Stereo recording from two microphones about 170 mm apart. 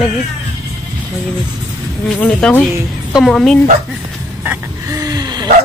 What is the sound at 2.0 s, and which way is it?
Speech, 5° left (ahead or behind).